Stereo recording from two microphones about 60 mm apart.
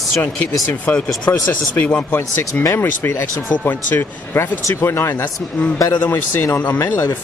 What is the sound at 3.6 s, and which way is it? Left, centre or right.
Speech, left.